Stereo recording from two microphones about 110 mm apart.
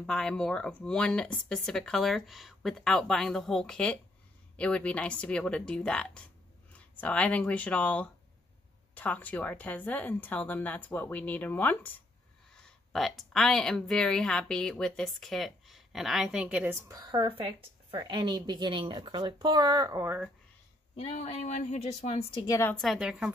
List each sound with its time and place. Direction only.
0.0 s a woman's voice: 5° left (ahead or behind)
12.9 s speech: centre (ahead or behind)
16.8 s speech: 40° right (ahead or behind)
20.9 s a woman's voice: 70° left (ahead or behind)
22.5 s a woman's voice: 20° left (ahead or behind)
22.8 s speech: centre (ahead or behind)